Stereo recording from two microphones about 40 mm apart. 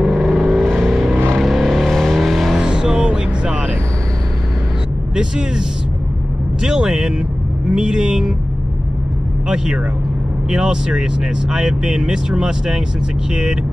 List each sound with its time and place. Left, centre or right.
0.2 s vehicle: centre
2.6 s music: centre
5.1 s speech: centre
6.6 s speech: centre
10.5 s speech: centre